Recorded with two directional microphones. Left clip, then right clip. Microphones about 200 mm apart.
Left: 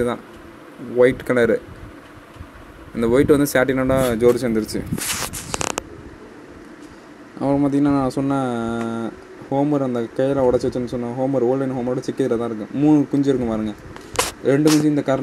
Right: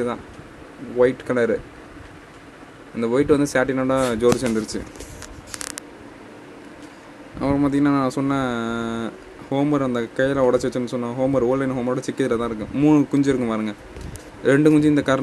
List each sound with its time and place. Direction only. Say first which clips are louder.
0.9 s speech: left 3 dB; 20° left (ahead or behind)
3.0 s speech: left 3 dB; 15° left (ahead or behind)
5.5 s a sound: left 8 dB; 15° right (ahead or behind)
7.3 s speech: left 2 dB; 10° left (ahead or behind)